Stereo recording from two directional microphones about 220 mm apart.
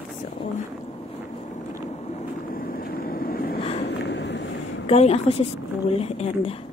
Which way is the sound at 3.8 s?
50° left (ahead or behind).